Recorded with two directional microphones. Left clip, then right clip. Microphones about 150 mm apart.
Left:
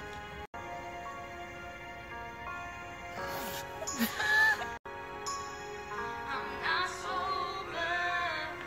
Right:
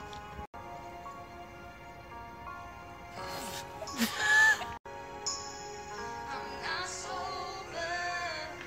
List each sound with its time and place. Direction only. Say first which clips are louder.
3.3 s music: left 1 dB; centre (ahead or behind)
4.0 s music: right 3 dB; 15° right (ahead or behind)
5.9 s music: left 3 dB; 30° left (ahead or behind)